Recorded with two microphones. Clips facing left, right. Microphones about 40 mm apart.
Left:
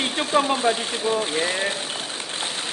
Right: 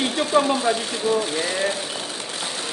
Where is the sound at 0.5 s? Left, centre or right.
Left.